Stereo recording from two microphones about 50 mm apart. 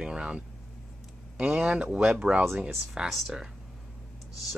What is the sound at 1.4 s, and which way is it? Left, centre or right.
Speech, centre.